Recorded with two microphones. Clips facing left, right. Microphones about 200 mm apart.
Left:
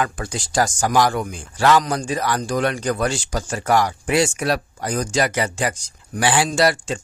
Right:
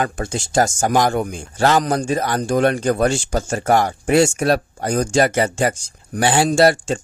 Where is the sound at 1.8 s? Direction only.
55° right (ahead or behind).